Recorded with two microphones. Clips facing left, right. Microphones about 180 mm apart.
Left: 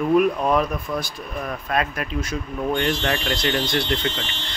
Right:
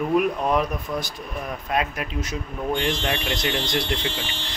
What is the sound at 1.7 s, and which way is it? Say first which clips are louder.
Speech: left 1 dB; 15° right (ahead or behind).